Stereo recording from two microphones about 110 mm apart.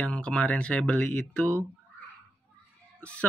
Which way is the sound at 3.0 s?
10° left (ahead or behind).